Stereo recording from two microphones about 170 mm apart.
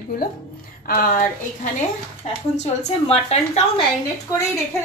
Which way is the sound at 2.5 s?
40° left (ahead or behind).